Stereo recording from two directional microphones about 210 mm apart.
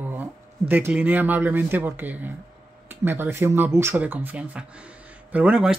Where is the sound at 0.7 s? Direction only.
10° right (ahead or behind).